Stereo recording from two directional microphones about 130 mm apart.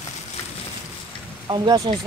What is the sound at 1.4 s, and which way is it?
Speech, 30° right (ahead or behind).